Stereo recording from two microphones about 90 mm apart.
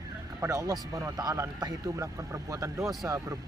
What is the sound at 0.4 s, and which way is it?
Speech, 35° right (ahead or behind).